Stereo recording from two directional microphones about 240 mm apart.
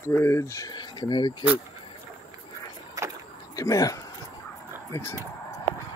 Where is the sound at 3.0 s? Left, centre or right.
Centre.